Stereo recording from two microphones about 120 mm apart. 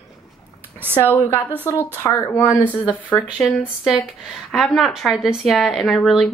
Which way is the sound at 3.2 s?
Centre (ahead or behind).